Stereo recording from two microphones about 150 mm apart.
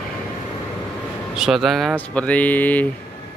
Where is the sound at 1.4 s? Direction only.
Centre (ahead or behind).